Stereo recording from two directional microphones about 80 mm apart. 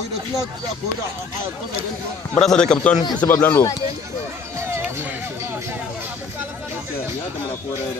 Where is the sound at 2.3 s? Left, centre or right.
Centre.